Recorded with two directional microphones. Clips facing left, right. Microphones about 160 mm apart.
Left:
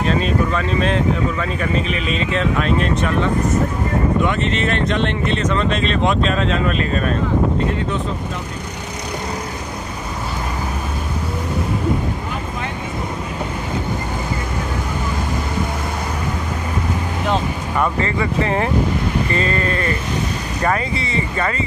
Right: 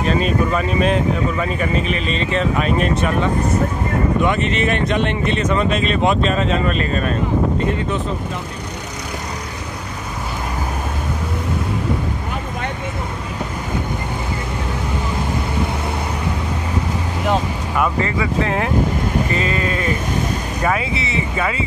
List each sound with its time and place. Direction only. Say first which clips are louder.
0.0 s speech: even; 5° right (ahead or behind)
2.0 s speech: even; 5° left (ahead or behind)
2.6 s speech: even; 10° right (ahead or behind)
4.3 s speech: right 1 dB; 10° right (ahead or behind)
17.3 s speech: right 1 dB; 5° right (ahead or behind)